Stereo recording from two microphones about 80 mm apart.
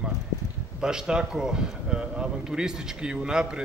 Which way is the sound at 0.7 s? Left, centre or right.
Centre.